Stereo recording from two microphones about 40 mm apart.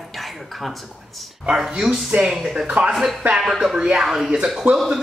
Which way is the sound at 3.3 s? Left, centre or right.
Centre.